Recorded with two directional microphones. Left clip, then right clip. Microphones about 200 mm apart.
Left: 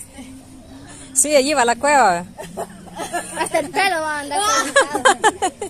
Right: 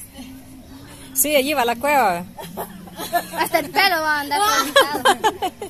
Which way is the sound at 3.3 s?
45° right (ahead or behind).